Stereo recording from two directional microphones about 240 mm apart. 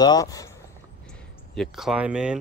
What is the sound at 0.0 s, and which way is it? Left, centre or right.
Speech, centre.